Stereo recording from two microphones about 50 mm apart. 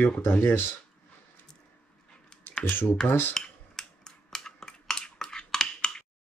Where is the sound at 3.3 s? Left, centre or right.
Centre.